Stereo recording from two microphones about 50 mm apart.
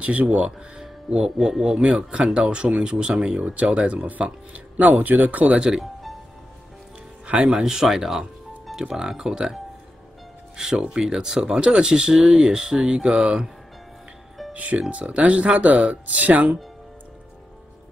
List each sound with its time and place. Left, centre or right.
0.0 s speech: right
0.7 s speech: centre
7.2 s speech: right
7.6 s speech: centre
10.6 s speech: centre
14.5 s speech: right